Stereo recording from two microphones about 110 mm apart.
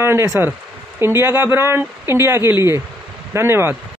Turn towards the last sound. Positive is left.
turn(degrees=-20)  # may be behind; listen again after turning